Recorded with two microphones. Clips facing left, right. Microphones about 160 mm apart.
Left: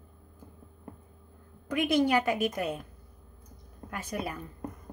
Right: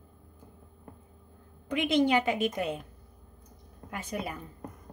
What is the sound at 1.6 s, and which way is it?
A woman's voice, 20° right (ahead or behind).